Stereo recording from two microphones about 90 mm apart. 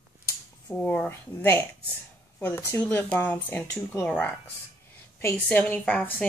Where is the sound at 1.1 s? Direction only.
30° left (ahead or behind).